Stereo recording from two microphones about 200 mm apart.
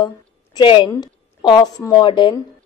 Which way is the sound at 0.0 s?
20° left (ahead or behind).